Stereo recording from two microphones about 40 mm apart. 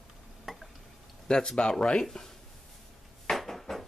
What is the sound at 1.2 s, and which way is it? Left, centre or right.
Speech, centre.